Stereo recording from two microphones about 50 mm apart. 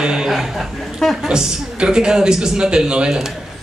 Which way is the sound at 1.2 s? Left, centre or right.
Centre.